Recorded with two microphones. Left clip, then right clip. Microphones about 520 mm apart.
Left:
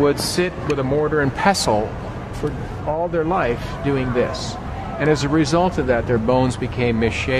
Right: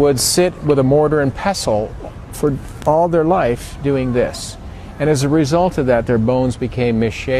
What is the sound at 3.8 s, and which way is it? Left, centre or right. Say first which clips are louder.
Speech: right 4 dB; right.